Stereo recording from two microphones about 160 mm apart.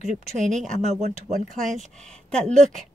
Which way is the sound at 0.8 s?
45° right (ahead or behind).